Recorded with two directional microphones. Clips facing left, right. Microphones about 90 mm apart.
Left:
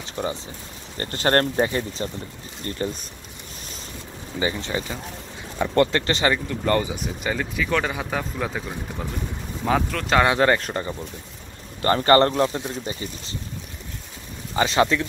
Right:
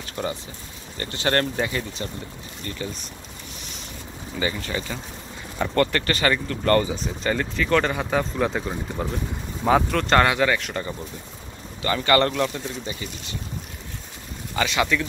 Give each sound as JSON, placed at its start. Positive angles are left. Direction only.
{"t": 0.0, "sound": "a sound", "side_deg": 20}
{"t": 0.9, "sound": "speech", "side_deg": 40}
{"t": 4.4, "sound": "speech", "side_deg": 25}
{"t": 10.4, "sound": "speech", "side_deg": 35}
{"t": 14.5, "sound": "speech", "side_deg": 30}